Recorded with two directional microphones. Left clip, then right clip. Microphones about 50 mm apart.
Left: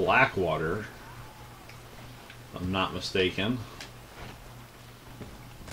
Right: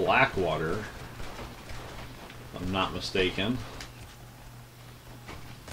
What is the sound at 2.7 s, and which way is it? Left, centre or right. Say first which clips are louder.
Speech: even; centre.